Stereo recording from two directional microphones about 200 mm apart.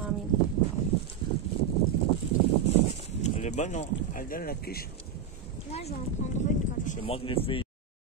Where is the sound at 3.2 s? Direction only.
35° left (ahead or behind).